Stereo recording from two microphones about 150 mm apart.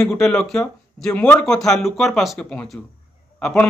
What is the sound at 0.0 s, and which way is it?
A man's voice, 5° left (ahead or behind).